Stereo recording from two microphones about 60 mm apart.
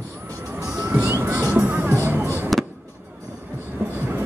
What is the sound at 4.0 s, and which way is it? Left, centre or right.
Train, right.